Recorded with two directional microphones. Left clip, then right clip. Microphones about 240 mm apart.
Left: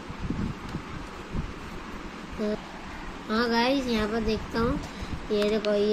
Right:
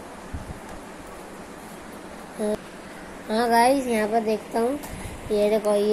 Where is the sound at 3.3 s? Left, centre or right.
Centre.